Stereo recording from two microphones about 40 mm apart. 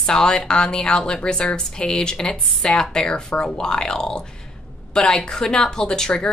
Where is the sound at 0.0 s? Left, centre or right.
Left.